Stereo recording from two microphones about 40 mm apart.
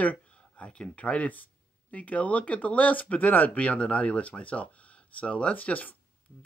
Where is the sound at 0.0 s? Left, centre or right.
Left.